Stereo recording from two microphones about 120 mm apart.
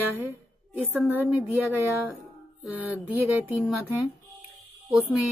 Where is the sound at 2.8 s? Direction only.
15° right (ahead or behind).